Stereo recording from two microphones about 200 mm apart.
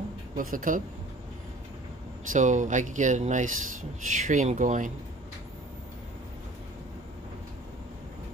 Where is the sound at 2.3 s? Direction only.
40° right (ahead or behind).